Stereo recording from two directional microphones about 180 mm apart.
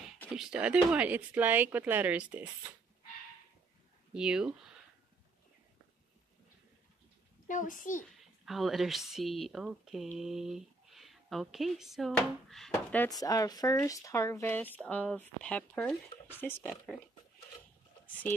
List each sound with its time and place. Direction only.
0.3 s speech: 5° right (ahead or behind)
4.1 s speech: 5° right (ahead or behind)
7.4 s a child's voice: 45° left (ahead or behind)
8.2 s speech: centre (ahead or behind)
13.1 s speech: 20° left (ahead or behind)